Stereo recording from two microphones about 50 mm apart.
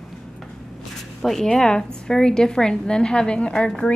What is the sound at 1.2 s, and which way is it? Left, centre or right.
A woman's voice, centre.